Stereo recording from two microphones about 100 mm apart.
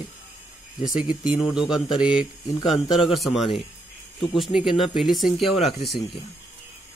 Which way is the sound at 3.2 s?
Centre (ahead or behind).